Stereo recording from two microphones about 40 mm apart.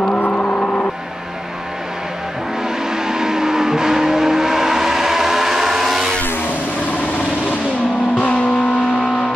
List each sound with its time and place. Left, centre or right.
0.0 s vehicle: left
2.9 s vehicle: centre